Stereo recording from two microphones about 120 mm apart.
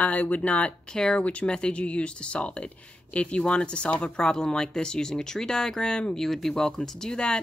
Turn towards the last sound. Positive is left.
turn(degrees=5)  # may be behind; listen again after turning